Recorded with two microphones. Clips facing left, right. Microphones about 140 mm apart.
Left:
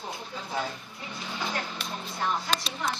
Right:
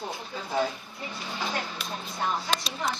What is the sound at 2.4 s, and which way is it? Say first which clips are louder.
Speech: right 1 dB; 5° right (ahead or behind).